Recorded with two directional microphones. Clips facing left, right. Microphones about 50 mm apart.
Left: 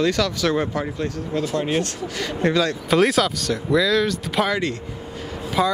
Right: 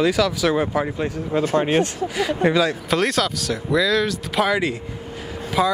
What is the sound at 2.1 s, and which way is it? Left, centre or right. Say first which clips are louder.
Speech: right 2 dB; centre.